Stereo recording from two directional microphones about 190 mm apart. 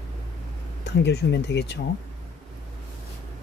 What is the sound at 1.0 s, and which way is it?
Speech, 60° left (ahead or behind).